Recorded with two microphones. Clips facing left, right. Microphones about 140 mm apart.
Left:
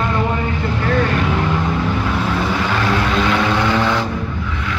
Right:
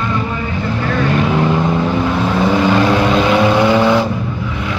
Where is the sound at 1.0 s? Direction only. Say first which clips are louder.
Right 4 dB; 15° right (ahead or behind).